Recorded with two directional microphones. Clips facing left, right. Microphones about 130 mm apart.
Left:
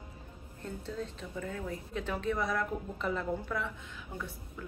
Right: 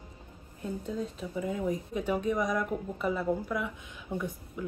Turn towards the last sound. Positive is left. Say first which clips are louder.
# right 7 dB
turn(degrees=-15)  # may be behind; listen again after turning